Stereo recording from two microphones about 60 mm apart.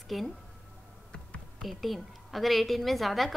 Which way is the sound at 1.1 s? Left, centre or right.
Centre.